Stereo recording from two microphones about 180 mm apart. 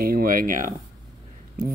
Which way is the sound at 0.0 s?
55° right (ahead or behind).